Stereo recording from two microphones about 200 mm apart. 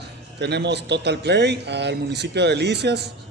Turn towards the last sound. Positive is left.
turn(degrees=-55)  # may be behind; listen again after turning